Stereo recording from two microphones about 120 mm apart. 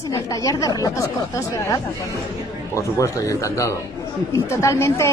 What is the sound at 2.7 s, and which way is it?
A woman's voice, 25° left (ahead or behind).